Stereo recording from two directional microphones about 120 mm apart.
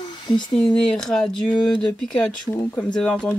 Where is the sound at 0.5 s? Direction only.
5° left (ahead or behind).